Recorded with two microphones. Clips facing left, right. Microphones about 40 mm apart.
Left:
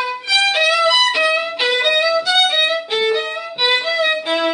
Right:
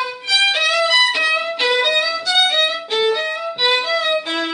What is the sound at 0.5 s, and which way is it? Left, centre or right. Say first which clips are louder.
Music: left 1 dB; centre.